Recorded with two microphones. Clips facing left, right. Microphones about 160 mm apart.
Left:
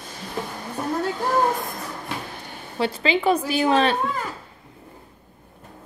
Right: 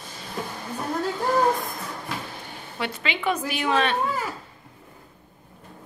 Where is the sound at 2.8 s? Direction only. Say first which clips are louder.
Left 7 dB; 35° left (ahead or behind).